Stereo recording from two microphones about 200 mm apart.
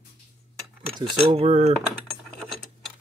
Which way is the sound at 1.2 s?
30° right (ahead or behind).